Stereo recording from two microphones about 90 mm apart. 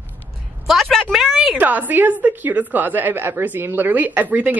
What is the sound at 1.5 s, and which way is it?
Speech, 20° right (ahead or behind).